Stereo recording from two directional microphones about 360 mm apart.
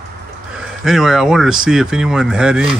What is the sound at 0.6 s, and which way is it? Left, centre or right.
Speech, centre.